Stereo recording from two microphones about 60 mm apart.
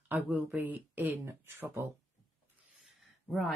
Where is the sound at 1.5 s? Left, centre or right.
Right.